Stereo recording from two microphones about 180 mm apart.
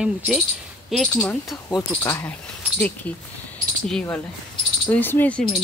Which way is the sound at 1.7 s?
15° left (ahead or behind).